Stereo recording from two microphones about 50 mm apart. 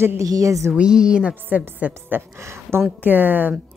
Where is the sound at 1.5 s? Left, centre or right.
Right.